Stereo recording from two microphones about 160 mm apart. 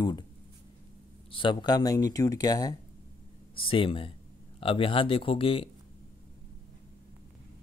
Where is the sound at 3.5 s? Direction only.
35° left (ahead or behind).